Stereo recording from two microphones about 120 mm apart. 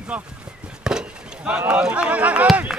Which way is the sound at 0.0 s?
10° right (ahead or behind).